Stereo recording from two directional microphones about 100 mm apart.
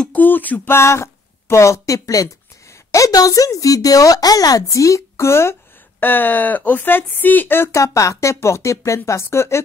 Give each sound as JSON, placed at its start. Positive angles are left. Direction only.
{"t": 0.0, "sound": "a woman's voice", "side_deg": 15}